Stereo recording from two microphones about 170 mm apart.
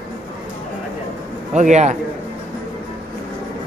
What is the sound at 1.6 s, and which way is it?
Speech, 45° right (ahead or behind).